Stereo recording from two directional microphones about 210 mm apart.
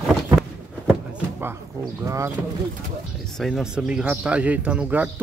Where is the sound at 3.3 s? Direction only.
Centre (ahead or behind).